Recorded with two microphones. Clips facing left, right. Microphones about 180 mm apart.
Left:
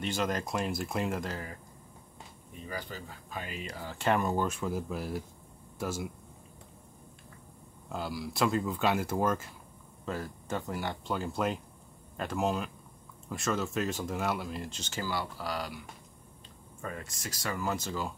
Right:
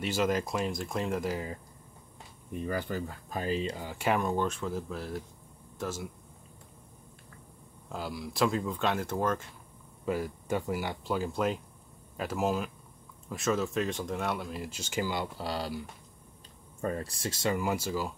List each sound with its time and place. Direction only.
0.0 s speech: 5° right (ahead or behind)
1.3 s speech: 20° right (ahead or behind)
2.6 s speech: 55° right (ahead or behind); by 4.2 s 10° right (ahead or behind)
4.2 s speech: 5° left (ahead or behind)
7.9 s speech: centre (ahead or behind)
10.0 s speech: 10° right (ahead or behind); by 15.8 s 30° right (ahead or behind)
16.8 s speech: 35° right (ahead or behind); by 18.1 s 10° right (ahead or behind)